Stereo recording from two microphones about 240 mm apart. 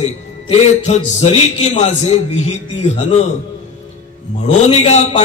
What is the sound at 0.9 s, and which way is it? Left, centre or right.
A man's voice, left.